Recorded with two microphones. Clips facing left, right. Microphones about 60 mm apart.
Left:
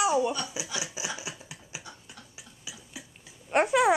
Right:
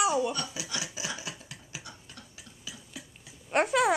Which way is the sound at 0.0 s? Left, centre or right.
Centre.